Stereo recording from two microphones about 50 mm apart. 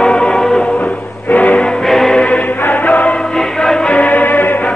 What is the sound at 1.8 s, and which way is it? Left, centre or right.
Music, centre.